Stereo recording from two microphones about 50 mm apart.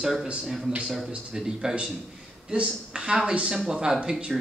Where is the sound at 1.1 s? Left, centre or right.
Centre.